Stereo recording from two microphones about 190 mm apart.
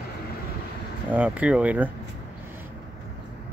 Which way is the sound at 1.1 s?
10° right (ahead or behind).